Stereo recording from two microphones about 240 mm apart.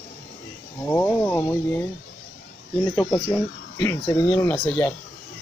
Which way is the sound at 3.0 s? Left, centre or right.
Left.